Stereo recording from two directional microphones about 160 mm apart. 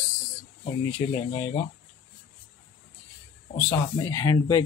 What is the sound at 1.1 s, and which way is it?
Speech, 25° left (ahead or behind).